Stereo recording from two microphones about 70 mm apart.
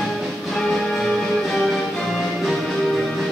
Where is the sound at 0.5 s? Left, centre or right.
Centre.